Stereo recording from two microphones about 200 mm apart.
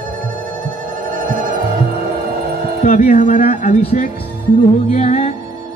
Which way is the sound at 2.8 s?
45° left (ahead or behind).